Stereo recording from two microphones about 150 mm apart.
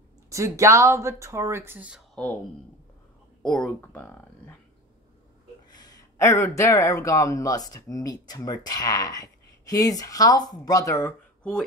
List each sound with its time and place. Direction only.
0.3 s speech: 20° right (ahead or behind)
3.4 s speech: 5° left (ahead or behind)
5.7 s speech: 25° left (ahead or behind)